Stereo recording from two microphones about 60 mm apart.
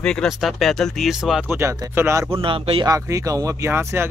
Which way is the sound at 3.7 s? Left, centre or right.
Right.